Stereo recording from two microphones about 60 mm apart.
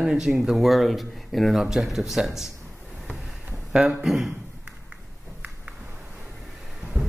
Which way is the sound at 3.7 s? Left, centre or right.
Centre.